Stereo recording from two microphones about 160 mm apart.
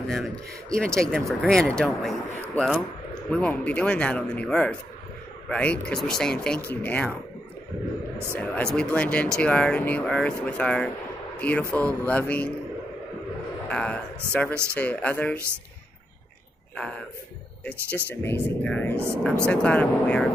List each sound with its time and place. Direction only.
0.0 s speech: centre (ahead or behind)
8.4 s speech: 5° left (ahead or behind)
13.7 s speech: 5° left (ahead or behind)
14.5 s speech: 15° right (ahead or behind)
14.8 s speech: 10° left (ahead or behind)
16.7 s speech: 5° left (ahead or behind)